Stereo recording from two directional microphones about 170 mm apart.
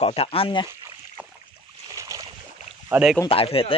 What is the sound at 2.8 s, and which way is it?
Speech, 5° right (ahead or behind).